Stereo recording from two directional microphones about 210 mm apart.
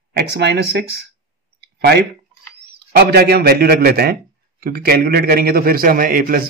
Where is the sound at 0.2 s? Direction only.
55° right (ahead or behind).